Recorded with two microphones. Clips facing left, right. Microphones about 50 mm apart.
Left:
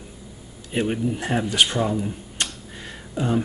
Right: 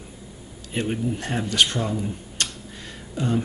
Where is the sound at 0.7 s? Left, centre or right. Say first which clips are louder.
Left 2 dB; centre.